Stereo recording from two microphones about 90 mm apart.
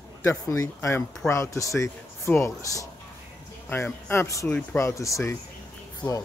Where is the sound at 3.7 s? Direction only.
20° left (ahead or behind).